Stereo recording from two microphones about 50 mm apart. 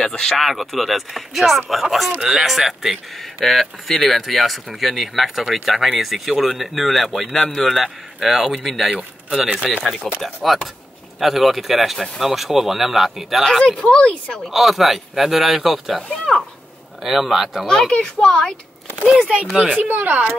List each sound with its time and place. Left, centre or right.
0.0 s speech: centre
0.4 s speech: centre
13.7 s speech: centre
14.4 s speech: centre
16.0 s speech: centre
17.0 s speech: centre
17.6 s speech: centre
19.8 s speech: right